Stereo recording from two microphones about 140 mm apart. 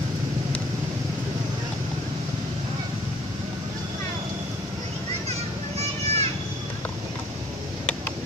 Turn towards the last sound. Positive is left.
turn(degrees=-50)  # may be behind; listen again after turning